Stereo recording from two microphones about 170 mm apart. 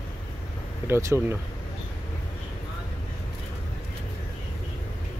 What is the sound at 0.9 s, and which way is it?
Speech, 15° right (ahead or behind).